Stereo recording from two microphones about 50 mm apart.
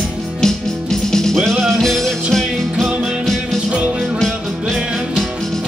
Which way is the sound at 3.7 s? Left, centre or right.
Right.